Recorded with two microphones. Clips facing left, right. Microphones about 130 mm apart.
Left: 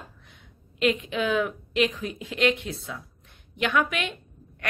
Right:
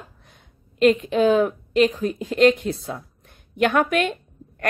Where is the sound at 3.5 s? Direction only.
45° right (ahead or behind).